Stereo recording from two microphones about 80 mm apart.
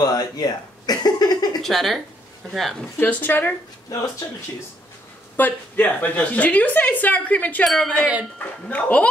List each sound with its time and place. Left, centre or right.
0.0 s speech: left
1.6 s a woman's voice: centre
3.0 s a woman's voice: left
5.4 s a woman's voice: left
7.6 s a woman's voice: centre
8.4 s a woman's voice: left